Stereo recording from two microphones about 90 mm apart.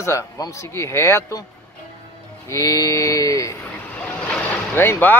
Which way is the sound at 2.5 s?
40° left (ahead or behind).